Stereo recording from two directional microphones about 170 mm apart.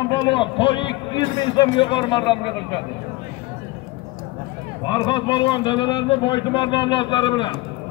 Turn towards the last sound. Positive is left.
turn(degrees=25)  # may be behind; listen again after turning